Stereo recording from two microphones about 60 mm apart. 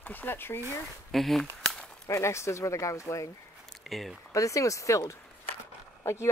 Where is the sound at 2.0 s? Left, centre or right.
Left.